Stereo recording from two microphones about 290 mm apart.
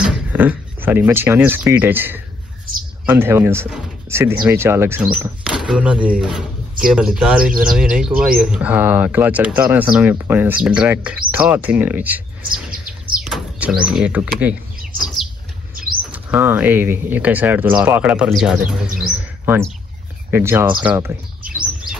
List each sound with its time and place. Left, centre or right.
0.0 s speech: centre
13.1 s chirp: centre
13.8 s speech: centre
15.7 s a sound: right
16.1 s speech: centre